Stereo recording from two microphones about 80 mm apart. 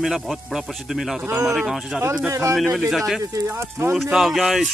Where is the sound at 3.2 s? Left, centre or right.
Right.